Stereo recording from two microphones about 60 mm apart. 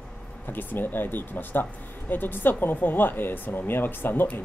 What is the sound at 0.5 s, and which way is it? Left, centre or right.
Speech, left.